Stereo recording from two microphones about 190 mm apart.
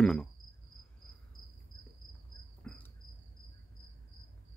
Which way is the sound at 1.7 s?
20° left (ahead or behind).